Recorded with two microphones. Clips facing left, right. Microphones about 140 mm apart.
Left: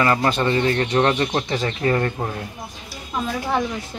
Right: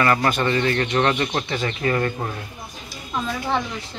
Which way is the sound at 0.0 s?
20° left (ahead or behind).